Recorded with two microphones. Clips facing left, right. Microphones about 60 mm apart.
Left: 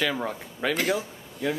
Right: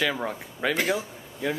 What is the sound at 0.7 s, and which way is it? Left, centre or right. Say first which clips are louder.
Speech: even; right.